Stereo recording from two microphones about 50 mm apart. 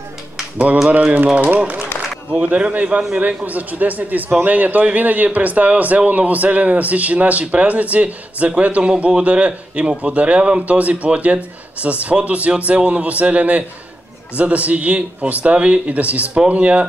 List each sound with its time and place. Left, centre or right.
0.8 s a man's voice: right
2.3 s a man's voice: right